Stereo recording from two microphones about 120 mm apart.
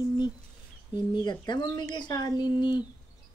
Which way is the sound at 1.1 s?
40° left (ahead or behind).